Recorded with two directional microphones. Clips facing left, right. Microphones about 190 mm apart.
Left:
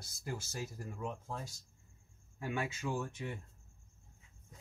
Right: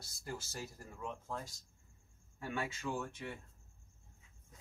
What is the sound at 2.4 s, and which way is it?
Speech, 15° left (ahead or behind).